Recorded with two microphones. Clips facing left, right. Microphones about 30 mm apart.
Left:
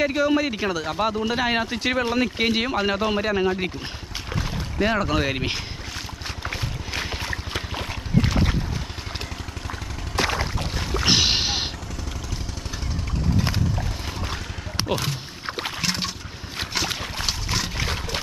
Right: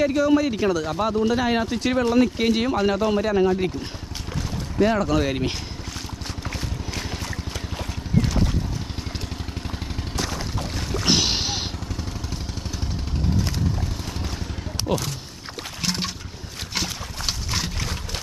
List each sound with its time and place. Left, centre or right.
0.0 s speech: centre
4.3 s boat: centre
10.1 s a sound: left
10.7 s a sound: centre
13.4 s clip-clop: left
14.8 s rowboat: left
15.8 s boat: centre
17.3 s boat: centre